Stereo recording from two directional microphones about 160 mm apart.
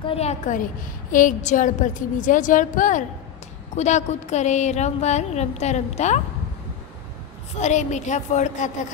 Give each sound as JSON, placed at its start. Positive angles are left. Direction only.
{"t": 0.0, "sound": "a woman's voice", "side_deg": 40}
{"t": 0.4, "sound": "a woman's voice", "side_deg": 55}
{"t": 7.5, "sound": "speech", "side_deg": 45}